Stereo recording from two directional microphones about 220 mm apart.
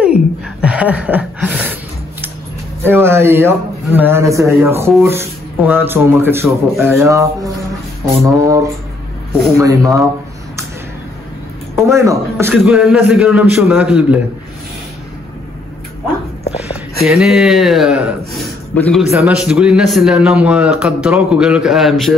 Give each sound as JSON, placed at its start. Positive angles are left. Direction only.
{"t": 0.0, "sound": "a sound", "side_deg": -5}
{"t": 2.8, "sound": "a man's voice", "side_deg": -10}
{"t": 9.6, "sound": "a man's voice", "side_deg": -15}
{"t": 11.7, "sound": "a man's voice", "side_deg": -15}
{"t": 17.0, "sound": "a man's voice", "side_deg": 0}